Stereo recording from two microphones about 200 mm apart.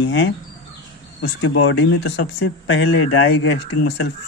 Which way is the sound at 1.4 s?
70° left (ahead or behind).